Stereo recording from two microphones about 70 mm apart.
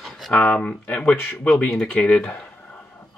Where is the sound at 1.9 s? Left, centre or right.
Left.